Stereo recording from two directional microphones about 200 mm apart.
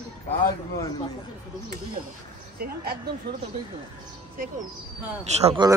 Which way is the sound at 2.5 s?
50° right (ahead or behind).